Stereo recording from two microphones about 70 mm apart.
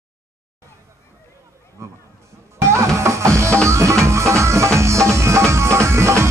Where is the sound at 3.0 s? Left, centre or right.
Right.